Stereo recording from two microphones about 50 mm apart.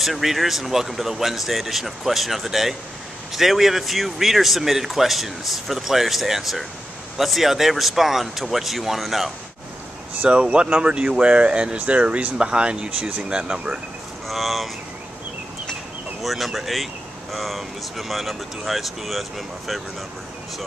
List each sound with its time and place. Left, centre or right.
0.0 s speech: centre
10.2 s speech: right
14.2 s a sound: centre
16.2 s speech: centre